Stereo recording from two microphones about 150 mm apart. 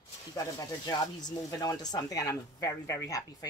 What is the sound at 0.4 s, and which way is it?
Speech, 25° left (ahead or behind).